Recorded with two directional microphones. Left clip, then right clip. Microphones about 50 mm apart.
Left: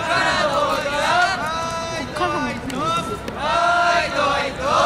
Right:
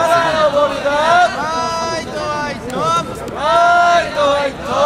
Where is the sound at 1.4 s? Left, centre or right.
Right.